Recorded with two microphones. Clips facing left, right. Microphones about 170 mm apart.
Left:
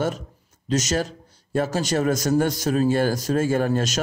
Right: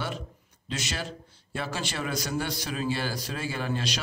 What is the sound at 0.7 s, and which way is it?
A man's voice, 40° left (ahead or behind).